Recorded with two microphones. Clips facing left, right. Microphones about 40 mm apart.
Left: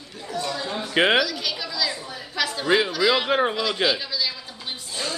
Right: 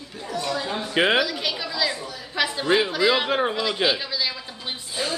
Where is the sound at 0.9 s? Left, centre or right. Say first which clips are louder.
Left 1 dB; centre.